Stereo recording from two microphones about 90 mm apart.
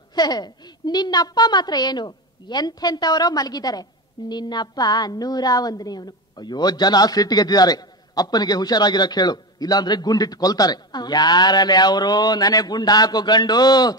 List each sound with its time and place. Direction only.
0.1 s a woman's voice: 50° left (ahead or behind)